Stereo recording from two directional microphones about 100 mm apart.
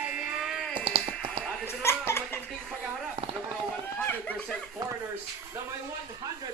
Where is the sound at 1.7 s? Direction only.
25° left (ahead or behind).